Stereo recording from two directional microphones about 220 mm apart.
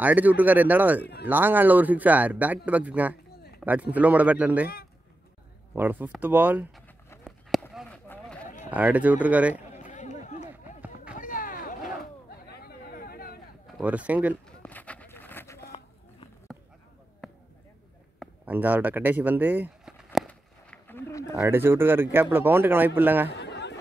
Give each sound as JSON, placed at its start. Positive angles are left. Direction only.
{"t": 0.0, "sound": "speech", "side_deg": -5}
{"t": 5.8, "sound": "speech", "side_deg": -10}
{"t": 7.7, "sound": "a sound", "side_deg": 5}
{"t": 8.6, "sound": "speech", "side_deg": -5}
{"t": 9.8, "sound": "chatter", "side_deg": 35}
{"t": 11.1, "sound": "a sound", "side_deg": 40}
{"t": 12.0, "sound": "chatter", "side_deg": 45}
{"t": 13.7, "sound": "speech", "side_deg": -5}
{"t": 14.6, "sound": "a sound", "side_deg": 5}
{"t": 17.2, "sound": "basketball bounce", "side_deg": 0}
{"t": 18.2, "sound": "a sound", "side_deg": -10}
{"t": 21.4, "sound": "speech", "side_deg": -10}
{"t": 23.3, "sound": "chatter", "side_deg": 50}